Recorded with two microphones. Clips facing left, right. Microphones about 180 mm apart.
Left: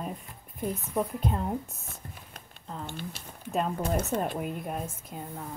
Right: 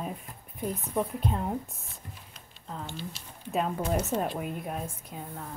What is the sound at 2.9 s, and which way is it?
Speech, 55° left (ahead or behind).